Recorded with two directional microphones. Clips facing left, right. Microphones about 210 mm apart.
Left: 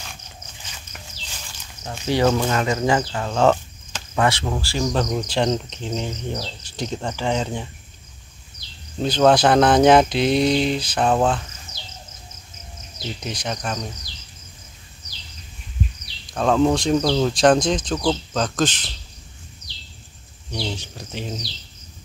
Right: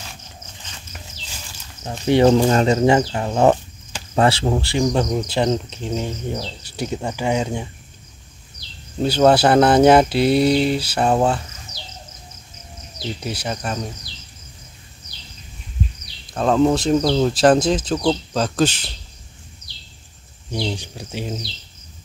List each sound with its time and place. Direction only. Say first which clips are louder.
1.9 s speech: right 5 dB; 20° right (ahead or behind)
4.1 s speech: right 4 dB; 30° right (ahead or behind)
5.3 s speech: right 2 dB; 5° right (ahead or behind)
9.0 s speech: right 2 dB; 10° right (ahead or behind)
11.7 s bird: right 3 dB; 25° left (ahead or behind)
13.2 s speech: right 1 dB; 5° right (ahead or behind)
16.3 s speech: right 1 dB; 5° right (ahead or behind)
20.6 s speech: right 2 dB; 10° right (ahead or behind)